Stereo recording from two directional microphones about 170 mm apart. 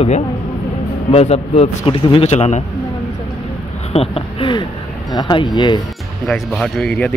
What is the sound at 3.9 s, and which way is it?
A man's voice, 35° left (ahead or behind).